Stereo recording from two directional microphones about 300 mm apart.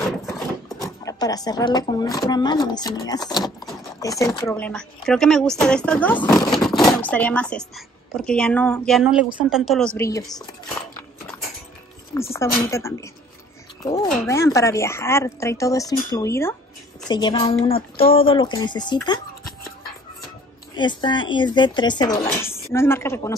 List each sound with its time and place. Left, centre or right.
0.7 s speech: centre
12.1 s speech: centre
20.7 s speech: centre